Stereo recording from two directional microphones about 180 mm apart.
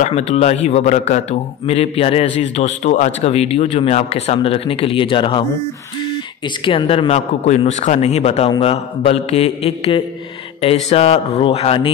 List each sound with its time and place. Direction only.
0.0 s a man's voice: 35° left (ahead or behind)
6.6 s a man's voice: 30° left (ahead or behind)